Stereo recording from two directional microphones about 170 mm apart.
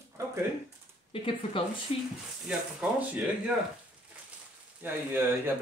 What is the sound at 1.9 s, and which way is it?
Speech, 35° left (ahead or behind).